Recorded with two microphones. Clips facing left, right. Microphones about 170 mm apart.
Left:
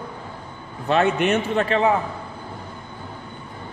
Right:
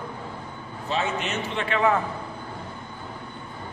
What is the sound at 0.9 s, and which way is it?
Speech, 60° left (ahead or behind).